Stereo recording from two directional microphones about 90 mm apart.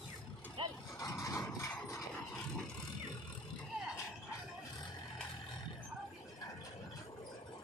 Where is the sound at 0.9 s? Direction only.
40° left (ahead or behind).